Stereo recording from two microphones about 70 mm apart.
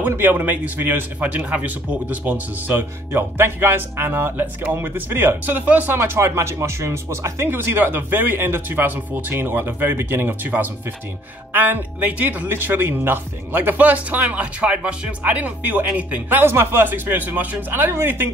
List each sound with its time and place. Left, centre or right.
0.0 s speech: right
5.9 s speech: right